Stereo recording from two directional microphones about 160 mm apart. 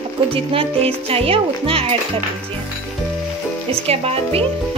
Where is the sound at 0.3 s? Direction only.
35° right (ahead or behind).